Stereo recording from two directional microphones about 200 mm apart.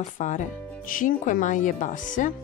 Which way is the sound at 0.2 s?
40° left (ahead or behind).